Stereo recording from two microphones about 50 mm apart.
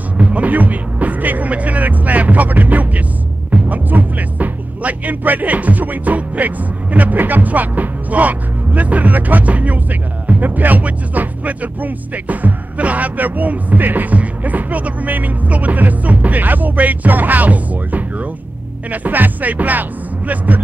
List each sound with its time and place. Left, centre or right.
0.2 s music: right